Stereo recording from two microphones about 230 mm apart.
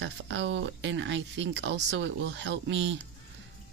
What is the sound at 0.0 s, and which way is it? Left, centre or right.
Speech, right.